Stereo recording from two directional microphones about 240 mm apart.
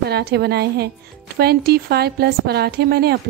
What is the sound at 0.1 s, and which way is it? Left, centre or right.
A woman's voice, right.